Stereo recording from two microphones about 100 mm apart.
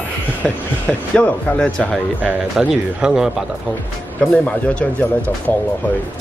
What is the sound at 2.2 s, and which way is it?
Speech, 5° right (ahead or behind).